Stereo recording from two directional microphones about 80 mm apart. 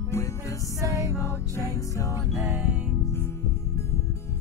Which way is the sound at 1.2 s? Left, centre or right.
Left.